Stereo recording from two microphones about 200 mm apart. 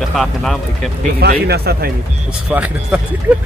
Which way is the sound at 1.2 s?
50° right (ahead or behind).